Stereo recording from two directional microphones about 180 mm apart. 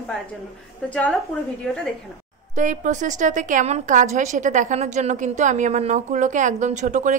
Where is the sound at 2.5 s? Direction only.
45° right (ahead or behind).